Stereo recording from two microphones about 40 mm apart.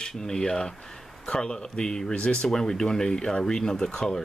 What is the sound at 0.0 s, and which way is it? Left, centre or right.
Speech, centre.